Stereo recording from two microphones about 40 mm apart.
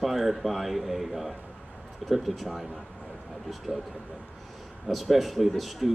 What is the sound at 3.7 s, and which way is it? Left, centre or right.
Speech, right.